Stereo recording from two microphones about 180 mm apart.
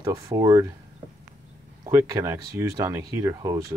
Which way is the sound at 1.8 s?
15° right (ahead or behind).